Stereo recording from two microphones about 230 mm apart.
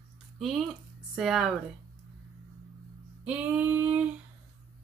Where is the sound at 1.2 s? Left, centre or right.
Centre.